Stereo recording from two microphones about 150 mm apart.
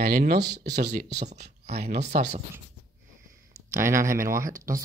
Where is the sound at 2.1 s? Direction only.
75° right (ahead or behind).